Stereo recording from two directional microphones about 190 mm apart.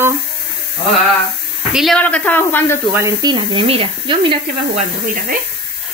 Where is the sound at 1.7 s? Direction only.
5° left (ahead or behind).